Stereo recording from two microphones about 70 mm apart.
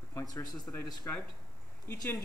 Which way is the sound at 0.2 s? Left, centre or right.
Left.